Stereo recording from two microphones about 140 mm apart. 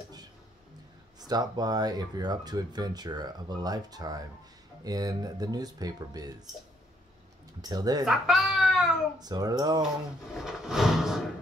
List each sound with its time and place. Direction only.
1.2 s speech: 30° right (ahead or behind)
7.6 s speech: 30° right (ahead or behind)
8.0 s speech: centre (ahead or behind)
9.2 s speech: 30° right (ahead or behind)
10.3 s a sound: 5° right (ahead or behind)